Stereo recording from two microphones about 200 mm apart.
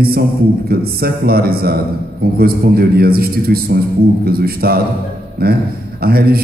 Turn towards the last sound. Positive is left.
turn(degrees=-50)  # may be behind; listen again after turning